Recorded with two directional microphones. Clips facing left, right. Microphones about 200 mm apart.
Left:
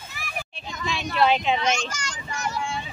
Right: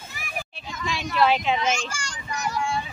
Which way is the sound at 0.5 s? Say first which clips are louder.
Left 1 dB; 5° right (ahead or behind).